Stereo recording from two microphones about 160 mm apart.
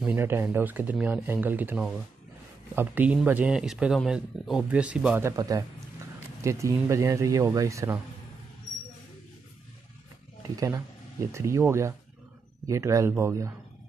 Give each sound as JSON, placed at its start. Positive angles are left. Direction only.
{"t": 0.0, "sound": "speech", "side_deg": -15}
{"t": 10.5, "sound": "speech", "side_deg": -20}